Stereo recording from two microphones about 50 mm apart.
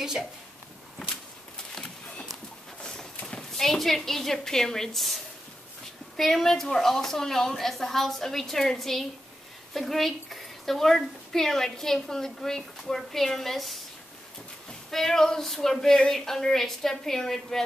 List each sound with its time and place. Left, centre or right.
2.8 s a sound: centre
3.3 s horse: centre
3.6 s a woman's voice: centre